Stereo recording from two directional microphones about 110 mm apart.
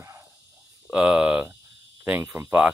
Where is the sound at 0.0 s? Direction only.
25° right (ahead or behind).